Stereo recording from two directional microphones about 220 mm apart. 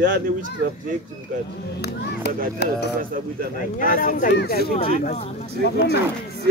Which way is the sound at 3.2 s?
40° right (ahead or behind).